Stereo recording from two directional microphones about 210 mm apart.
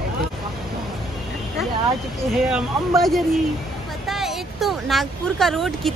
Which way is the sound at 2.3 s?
Centre (ahead or behind).